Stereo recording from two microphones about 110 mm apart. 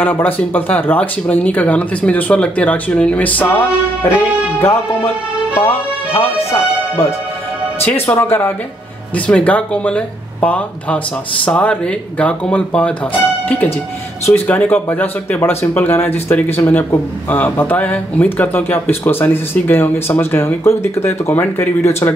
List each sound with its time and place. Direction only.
0.0 s speech: 15° left (ahead or behind)
5.6 s music: 25° left (ahead or behind)
7.8 s speech: 20° left (ahead or behind)
14.2 s speech: 20° left (ahead or behind)